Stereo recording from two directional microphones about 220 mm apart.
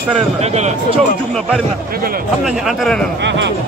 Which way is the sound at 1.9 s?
40° right (ahead or behind).